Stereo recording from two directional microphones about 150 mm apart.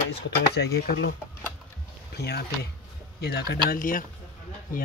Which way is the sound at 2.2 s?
90° left.